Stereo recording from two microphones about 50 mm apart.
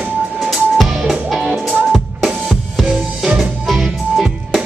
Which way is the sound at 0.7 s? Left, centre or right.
Centre.